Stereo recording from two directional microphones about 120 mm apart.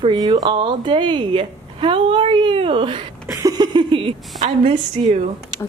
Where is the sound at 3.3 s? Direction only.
30° right (ahead or behind).